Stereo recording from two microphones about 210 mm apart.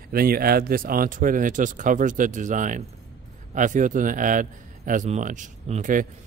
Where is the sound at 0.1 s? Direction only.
45° right (ahead or behind).